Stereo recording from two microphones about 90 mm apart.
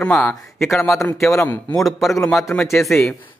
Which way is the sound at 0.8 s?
30° left (ahead or behind).